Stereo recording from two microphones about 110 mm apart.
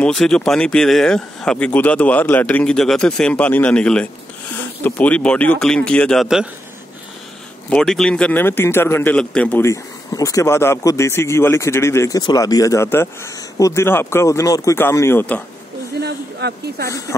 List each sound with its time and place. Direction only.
0.0 s speech: 5° left (ahead or behind)
6.2 s speech: 5° right (ahead or behind)
7.7 s speech: 5° left (ahead or behind); by 9.1 s 20° left (ahead or behind)
9.1 s speech: 10° left (ahead or behind)
9.6 s speech: 30° left (ahead or behind)
12.2 s speech: 40° left (ahead or behind); by 15.4 s 15° left (ahead or behind)